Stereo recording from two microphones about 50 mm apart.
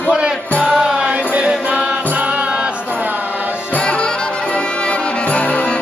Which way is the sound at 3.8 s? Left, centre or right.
Left.